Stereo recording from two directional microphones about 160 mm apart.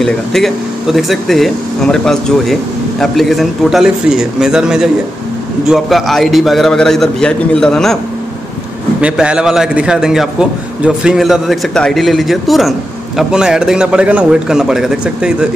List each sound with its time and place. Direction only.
0.0 s speech: centre (ahead or behind)
9.0 s speech: 5° right (ahead or behind)